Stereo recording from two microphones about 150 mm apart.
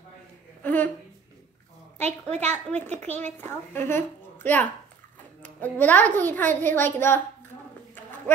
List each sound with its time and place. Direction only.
0.6 s a sound: 10° left (ahead or behind)
2.3 s a woman's voice: 50° right (ahead or behind)
3.3 s a woman's voice: 15° left (ahead or behind)